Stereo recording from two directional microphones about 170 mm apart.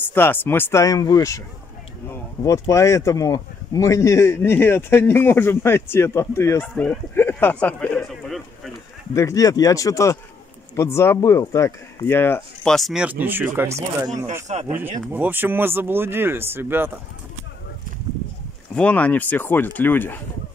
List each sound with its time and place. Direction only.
0.0 s a man's voice: 10° left (ahead or behind)
2.7 s a man's voice: 20° left (ahead or behind)
9.1 s a man's voice: 20° left (ahead or behind)
12.6 s speech: centre (ahead or behind); by 14.0 s 15° right (ahead or behind)
14.5 s speech: 40° right (ahead or behind)
15.1 s speech: 10° right (ahead or behind)
18.8 s a man's voice: 10° left (ahead or behind)